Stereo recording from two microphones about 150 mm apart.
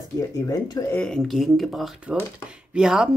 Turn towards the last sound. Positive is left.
turn(degrees=-5)  # may be behind; listen again after turning